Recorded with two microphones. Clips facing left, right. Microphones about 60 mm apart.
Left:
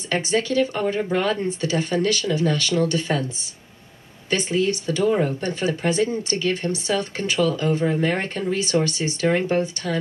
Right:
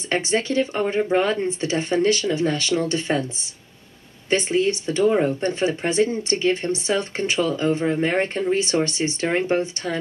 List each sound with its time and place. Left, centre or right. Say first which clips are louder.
0.3 s speech: left 2 dB; right
4.3 s speech: right 2 dB; right